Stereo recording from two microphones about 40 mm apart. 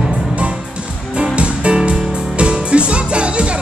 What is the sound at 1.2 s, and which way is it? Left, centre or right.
Music, right.